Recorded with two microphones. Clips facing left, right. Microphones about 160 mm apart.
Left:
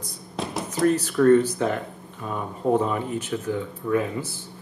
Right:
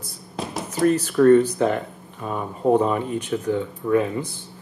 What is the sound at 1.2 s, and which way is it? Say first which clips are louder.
Speech: right 3 dB; 25° right (ahead or behind).